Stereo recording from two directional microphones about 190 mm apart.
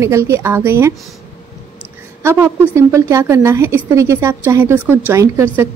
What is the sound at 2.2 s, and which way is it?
A woman's voice, 15° right (ahead or behind).